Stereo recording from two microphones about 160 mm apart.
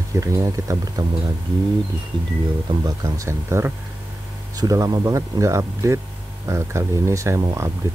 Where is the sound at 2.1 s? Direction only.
30° right (ahead or behind).